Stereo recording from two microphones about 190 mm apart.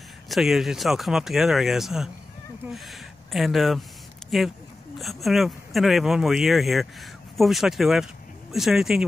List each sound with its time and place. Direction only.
0.3 s speech: centre (ahead or behind)